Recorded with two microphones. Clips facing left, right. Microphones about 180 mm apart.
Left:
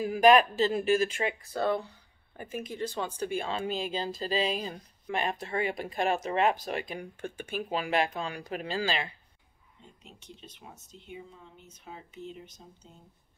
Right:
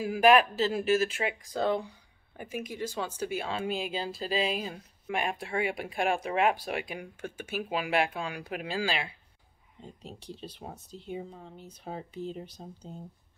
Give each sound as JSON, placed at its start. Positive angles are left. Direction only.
{"t": 0.0, "sound": "speech", "side_deg": -5}
{"t": 9.8, "sound": "speech", "side_deg": -35}